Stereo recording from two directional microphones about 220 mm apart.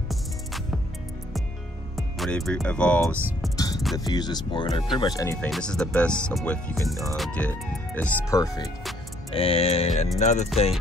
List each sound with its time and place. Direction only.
0.1 s music: centre (ahead or behind)
2.0 s speech: centre (ahead or behind)
3.2 s speech: 10° right (ahead or behind)
3.5 s music: 15° left (ahead or behind)
4.0 s speech: 20° left (ahead or behind)
10.1 s music: 30° left (ahead or behind)